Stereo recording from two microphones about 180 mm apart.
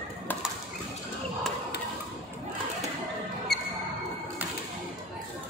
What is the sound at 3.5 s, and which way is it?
Music, 65° left (ahead or behind).